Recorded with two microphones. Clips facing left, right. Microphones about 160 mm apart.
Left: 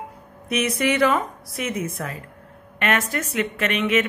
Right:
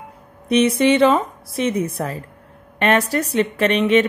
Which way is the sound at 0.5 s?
30° right (ahead or behind).